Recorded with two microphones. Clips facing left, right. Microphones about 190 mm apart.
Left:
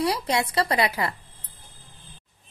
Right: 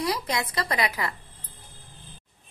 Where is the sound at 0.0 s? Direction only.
30° left (ahead or behind).